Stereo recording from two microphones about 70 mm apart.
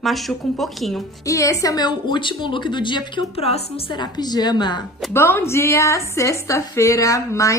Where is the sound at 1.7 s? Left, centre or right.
Left.